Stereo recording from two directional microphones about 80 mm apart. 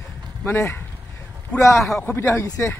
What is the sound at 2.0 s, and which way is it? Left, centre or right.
Speech, left.